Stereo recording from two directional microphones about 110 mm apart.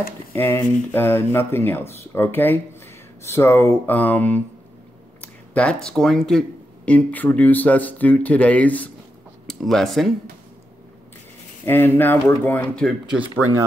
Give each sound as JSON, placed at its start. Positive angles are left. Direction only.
{"t": 0.3, "sound": "speech", "side_deg": 20}
{"t": 9.5, "sound": "speech", "side_deg": 0}
{"t": 11.6, "sound": "speech", "side_deg": 20}
{"t": 13.1, "sound": "speech", "side_deg": -15}